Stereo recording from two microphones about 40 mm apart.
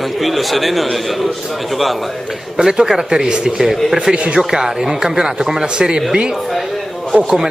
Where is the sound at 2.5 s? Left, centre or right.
Centre.